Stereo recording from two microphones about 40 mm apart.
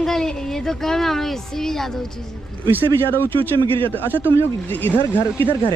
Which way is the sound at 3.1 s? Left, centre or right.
Left.